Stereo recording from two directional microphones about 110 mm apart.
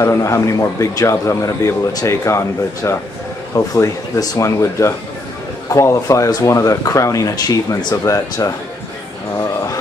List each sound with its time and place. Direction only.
0.0 s a man's voice: 25° left (ahead or behind)